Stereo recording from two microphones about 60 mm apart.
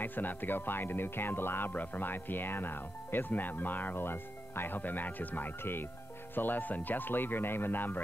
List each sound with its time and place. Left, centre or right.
0.0 s speech: left